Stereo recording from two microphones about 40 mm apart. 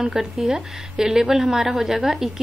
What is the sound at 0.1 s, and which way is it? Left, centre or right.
Speech, centre.